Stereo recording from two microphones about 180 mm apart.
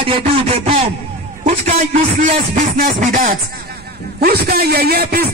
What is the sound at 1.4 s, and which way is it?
A man's voice, 40° right (ahead or behind).